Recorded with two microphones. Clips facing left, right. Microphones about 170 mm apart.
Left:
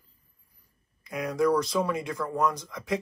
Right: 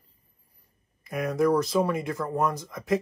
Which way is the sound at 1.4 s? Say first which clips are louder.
Right 2 dB; 25° right (ahead or behind).